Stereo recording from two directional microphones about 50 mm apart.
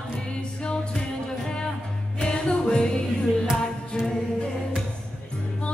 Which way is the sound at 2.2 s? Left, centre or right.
Centre.